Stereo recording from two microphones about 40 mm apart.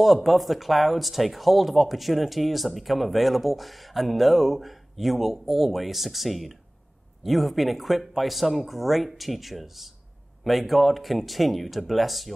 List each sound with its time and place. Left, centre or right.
0.0 s speech: centre